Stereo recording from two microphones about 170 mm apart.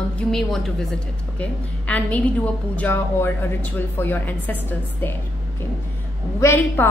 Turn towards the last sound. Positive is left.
turn(degrees=15)  # may be behind; listen again after turning